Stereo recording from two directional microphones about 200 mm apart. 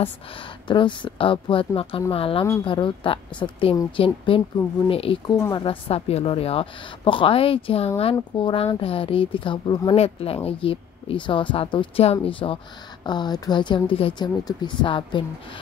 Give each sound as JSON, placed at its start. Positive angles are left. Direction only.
{"t": 0.7, "sound": "speech", "side_deg": 25}